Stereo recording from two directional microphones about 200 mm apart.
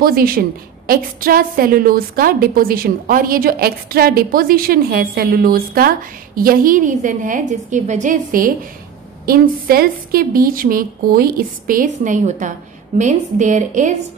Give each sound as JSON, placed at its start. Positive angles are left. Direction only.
{"t": 0.0, "sound": "a woman's voice", "side_deg": -45}